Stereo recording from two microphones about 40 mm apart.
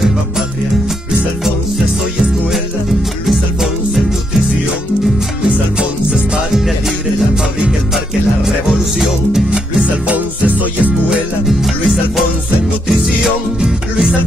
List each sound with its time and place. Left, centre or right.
8.6 s music: centre
9.5 s music: right
10.1 s music: right